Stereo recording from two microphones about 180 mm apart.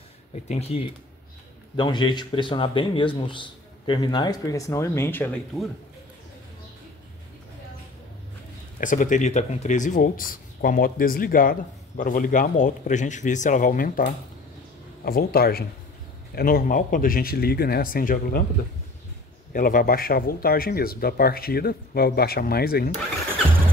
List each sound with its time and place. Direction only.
0.3 s speech: 35° left (ahead or behind)
1.8 s speech: 25° left (ahead or behind)
8.7 s speech: 45° left (ahead or behind)
19.5 s speech: 50° left (ahead or behind)